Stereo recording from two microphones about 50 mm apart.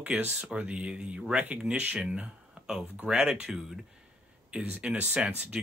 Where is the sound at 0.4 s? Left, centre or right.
Right.